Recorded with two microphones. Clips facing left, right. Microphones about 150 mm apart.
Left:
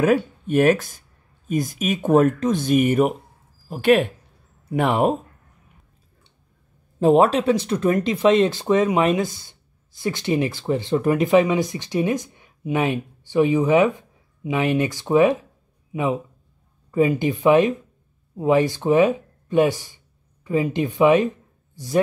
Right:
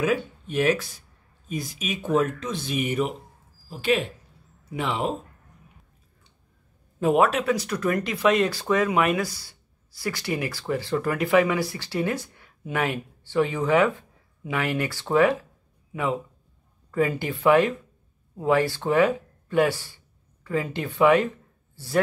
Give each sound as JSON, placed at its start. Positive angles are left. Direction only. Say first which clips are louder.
{"t": 0.0, "sound": "speech", "louder": "left 6 dB", "side_deg": 50}
{"t": 7.0, "sound": "a man's voice", "louder": "left 5 dB", "side_deg": 30}